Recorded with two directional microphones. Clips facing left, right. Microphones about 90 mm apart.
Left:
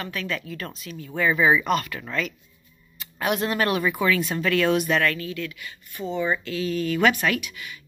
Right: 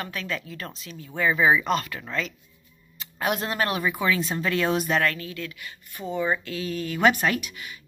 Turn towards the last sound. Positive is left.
turn(degrees=-40)  # may be behind; listen again after turning